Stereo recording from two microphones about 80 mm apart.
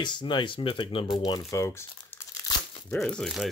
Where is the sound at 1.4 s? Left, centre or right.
Left.